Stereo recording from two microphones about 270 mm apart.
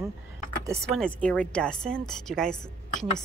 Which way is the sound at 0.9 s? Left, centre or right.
Centre.